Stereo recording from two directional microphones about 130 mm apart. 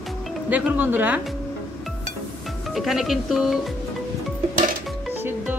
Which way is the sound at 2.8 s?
Centre (ahead or behind).